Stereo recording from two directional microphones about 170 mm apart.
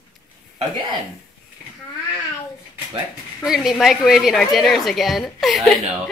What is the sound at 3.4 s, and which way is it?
A woman's voice, centre (ahead or behind).